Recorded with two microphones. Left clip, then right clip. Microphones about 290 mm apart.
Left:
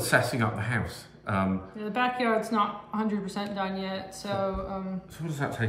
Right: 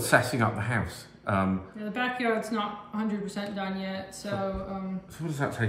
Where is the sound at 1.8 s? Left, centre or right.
Centre.